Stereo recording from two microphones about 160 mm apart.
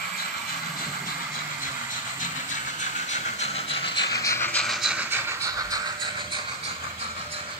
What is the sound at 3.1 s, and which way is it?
Train, 40° left (ahead or behind).